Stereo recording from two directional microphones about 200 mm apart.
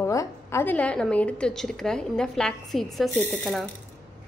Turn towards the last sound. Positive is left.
turn(degrees=5)  # may be behind; listen again after turning